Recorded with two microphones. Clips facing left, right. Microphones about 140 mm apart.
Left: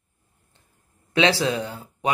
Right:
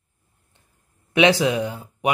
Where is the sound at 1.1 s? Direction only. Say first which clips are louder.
Right 3 dB; 20° right (ahead or behind).